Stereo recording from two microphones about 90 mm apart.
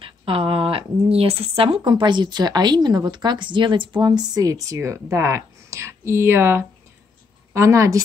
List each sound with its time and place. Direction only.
0.0 s speech: 90° right
1.9 s a woman's voice: 60° right (ahead or behind)
4.0 s speech: 50° right (ahead or behind)